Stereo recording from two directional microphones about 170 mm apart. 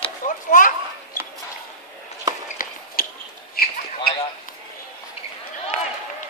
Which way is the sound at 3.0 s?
55° left (ahead or behind).